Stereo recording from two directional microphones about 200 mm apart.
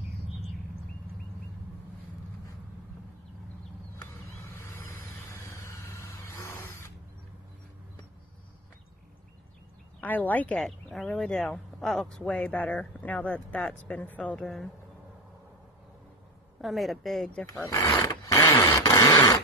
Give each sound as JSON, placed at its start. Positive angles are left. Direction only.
{"t": 3.9, "sound": "vehicle", "side_deg": 15}
{"t": 6.4, "sound": "drill", "side_deg": 15}
{"t": 9.9, "sound": "speech", "side_deg": 10}
{"t": 16.6, "sound": "speech", "side_deg": 0}
{"t": 17.5, "sound": "a sound", "side_deg": 15}